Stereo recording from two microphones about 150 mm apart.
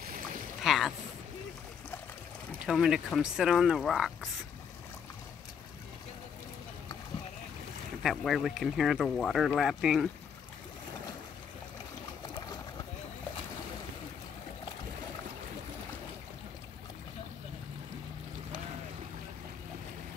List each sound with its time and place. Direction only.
0.0 s boat: 65° right (ahead or behind)
0.6 s speech: centre (ahead or behind)
2.6 s speech: 5° right (ahead or behind)
8.0 s speech: centre (ahead or behind)